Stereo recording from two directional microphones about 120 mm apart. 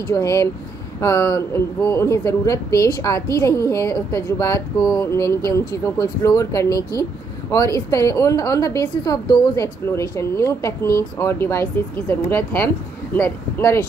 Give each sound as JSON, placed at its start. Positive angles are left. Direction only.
{"t": 0.1, "sound": "speech", "side_deg": 25}